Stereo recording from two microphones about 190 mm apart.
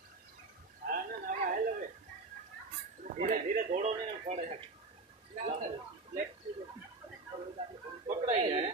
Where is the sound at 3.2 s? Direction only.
40° right (ahead or behind).